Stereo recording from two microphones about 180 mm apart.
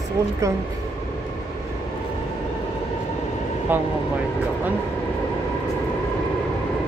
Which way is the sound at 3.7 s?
10° right (ahead or behind).